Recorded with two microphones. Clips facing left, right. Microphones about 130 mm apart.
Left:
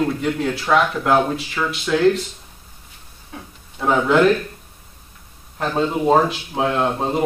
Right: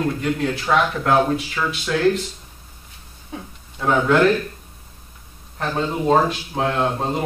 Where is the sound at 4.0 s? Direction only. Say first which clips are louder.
Left 1 dB; 15° left (ahead or behind).